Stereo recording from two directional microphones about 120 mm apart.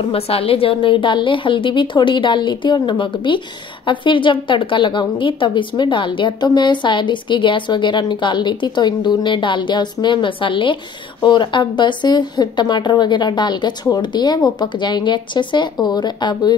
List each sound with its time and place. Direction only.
0.1 s a woman's voice: 50° left (ahead or behind)